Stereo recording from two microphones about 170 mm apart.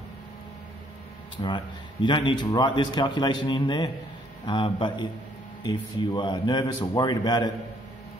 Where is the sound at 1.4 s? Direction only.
30° left (ahead or behind).